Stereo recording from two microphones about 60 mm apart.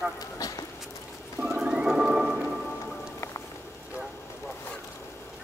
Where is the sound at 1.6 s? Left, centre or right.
Centre.